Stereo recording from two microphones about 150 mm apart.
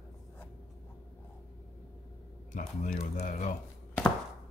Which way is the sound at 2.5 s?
60° left (ahead or behind).